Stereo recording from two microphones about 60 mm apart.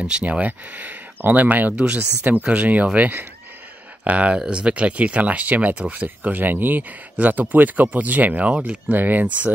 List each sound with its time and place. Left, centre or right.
0.0 s speech: right